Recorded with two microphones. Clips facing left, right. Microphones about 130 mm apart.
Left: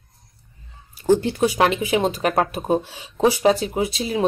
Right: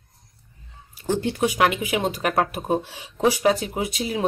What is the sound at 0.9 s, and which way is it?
Speech, 35° left (ahead or behind).